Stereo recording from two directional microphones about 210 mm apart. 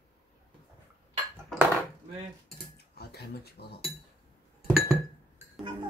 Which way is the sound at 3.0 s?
50° left (ahead or behind).